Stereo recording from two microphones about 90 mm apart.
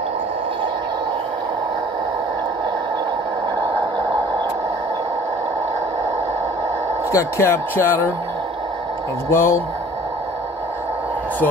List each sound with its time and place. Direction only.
7.1 s speech: 35° left (ahead or behind)
9.3 s speech: 30° left (ahead or behind)